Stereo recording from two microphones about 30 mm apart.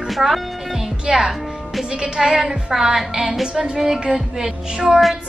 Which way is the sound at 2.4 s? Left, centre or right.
Centre.